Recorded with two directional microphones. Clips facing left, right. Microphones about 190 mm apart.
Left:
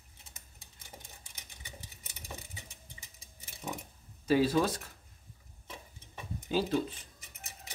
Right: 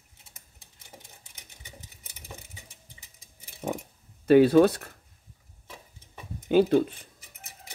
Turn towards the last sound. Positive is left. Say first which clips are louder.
# right 10 dB
turn(degrees=-60)  # may be behind; listen again after turning